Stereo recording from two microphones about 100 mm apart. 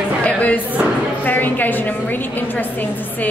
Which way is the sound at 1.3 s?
20° left (ahead or behind).